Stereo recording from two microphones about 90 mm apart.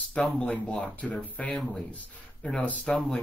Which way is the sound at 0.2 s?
15° left (ahead or behind).